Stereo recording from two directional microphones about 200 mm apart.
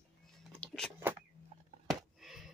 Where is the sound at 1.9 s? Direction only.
Centre (ahead or behind).